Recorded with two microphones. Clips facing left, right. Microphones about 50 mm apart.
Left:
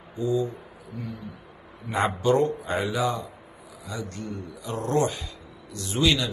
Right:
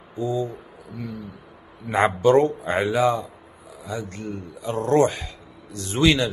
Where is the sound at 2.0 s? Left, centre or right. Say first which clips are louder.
Right 5 dB; right.